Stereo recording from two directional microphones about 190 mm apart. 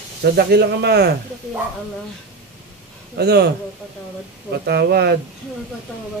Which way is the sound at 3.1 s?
60° right (ahead or behind).